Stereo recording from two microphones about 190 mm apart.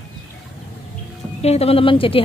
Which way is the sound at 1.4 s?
35° left (ahead or behind).